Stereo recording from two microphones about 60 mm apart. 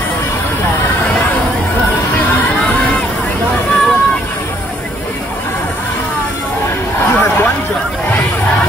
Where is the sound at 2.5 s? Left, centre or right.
Centre.